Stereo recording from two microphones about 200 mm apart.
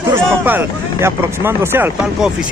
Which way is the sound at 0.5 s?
10° right (ahead or behind).